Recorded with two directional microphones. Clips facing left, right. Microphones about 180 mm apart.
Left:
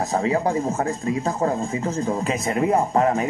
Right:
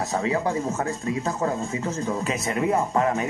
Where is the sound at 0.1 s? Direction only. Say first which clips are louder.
Left 3 dB; 35° left (ahead or behind).